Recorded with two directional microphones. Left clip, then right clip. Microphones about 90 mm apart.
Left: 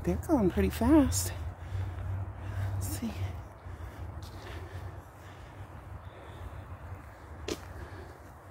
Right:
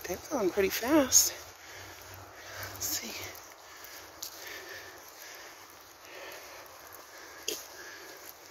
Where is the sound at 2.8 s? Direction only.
35° left (ahead or behind).